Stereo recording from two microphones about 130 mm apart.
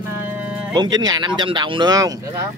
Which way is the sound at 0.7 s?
30° right (ahead or behind).